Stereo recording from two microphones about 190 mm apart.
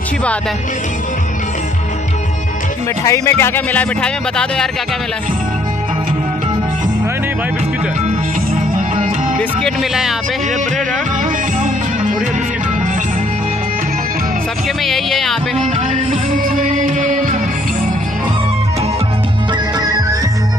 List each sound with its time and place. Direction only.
3.0 s speech: 15° left (ahead or behind)
9.4 s speech: 5° left (ahead or behind)
14.9 s speech: centre (ahead or behind)
16.5 s music: 40° right (ahead or behind)
19.8 s music: 20° right (ahead or behind)